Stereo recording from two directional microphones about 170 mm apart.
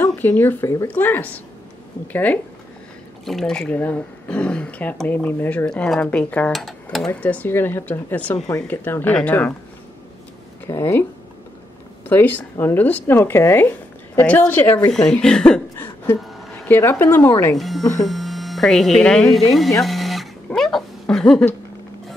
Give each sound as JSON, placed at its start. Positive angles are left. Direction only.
{"t": 0.0, "sound": "speech", "side_deg": 10}
{"t": 3.3, "sound": "speech", "side_deg": 0}
{"t": 10.7, "sound": "speech", "side_deg": 15}
{"t": 12.1, "sound": "speech", "side_deg": 10}
{"t": 17.6, "sound": "speech", "side_deg": 0}
{"t": 19.8, "sound": "a sound", "side_deg": 0}